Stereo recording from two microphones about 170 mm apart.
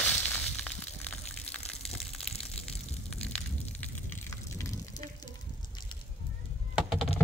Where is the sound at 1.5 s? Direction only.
40° left (ahead or behind).